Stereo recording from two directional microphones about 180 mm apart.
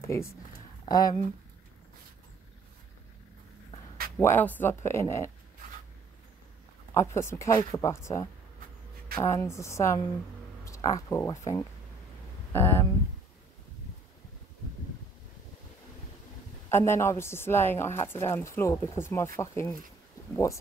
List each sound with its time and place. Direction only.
0.0 s speech: 15° left (ahead or behind)
4.2 s speech: 10° left (ahead or behind)
6.9 s speech: 15° left (ahead or behind)
16.6 s speech: 15° left (ahead or behind)